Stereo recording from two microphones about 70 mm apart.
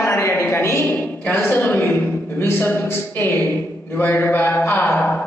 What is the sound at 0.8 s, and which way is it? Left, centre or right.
A woman's voice, left.